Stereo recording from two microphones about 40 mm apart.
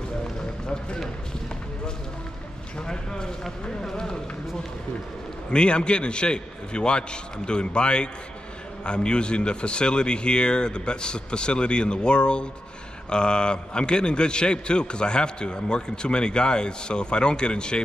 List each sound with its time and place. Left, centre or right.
0.2 s run: centre
2.9 s a man's voice: centre
5.5 s a man's voice: left